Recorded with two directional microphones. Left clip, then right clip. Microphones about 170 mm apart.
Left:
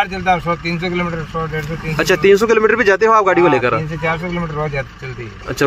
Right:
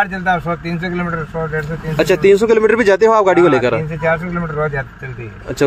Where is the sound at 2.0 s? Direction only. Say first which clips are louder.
Right 1 dB; 5° right (ahead or behind).